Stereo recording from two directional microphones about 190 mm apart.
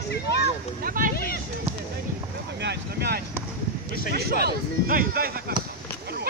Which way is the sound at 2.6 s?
60° right (ahead or behind).